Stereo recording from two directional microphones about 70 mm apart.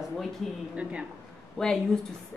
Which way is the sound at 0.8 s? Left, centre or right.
Centre.